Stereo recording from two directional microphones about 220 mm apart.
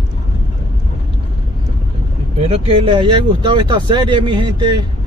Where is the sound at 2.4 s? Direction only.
25° right (ahead or behind).